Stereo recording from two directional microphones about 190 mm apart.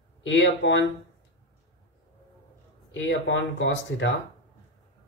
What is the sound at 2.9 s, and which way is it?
Speech, 75° left (ahead or behind).